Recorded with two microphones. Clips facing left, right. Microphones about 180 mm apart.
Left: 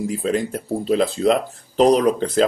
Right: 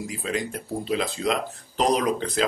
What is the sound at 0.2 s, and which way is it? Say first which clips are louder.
Speech: left 7 dB; 40° left (ahead or behind).